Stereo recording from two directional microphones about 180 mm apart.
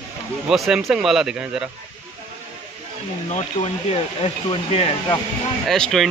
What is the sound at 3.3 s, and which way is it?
Speech, 35° left (ahead or behind).